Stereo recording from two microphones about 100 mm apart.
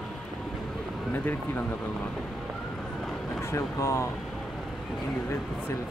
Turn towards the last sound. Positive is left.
turn(degrees=30)  # may be behind; listen again after turning